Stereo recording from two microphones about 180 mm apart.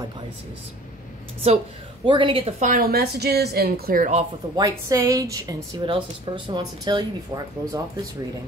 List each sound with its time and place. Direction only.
2.0 s a woman's voice: 30° right (ahead or behind)
2.6 s speech: 55° right (ahead or behind)
4.6 s a woman's voice: 20° right (ahead or behind)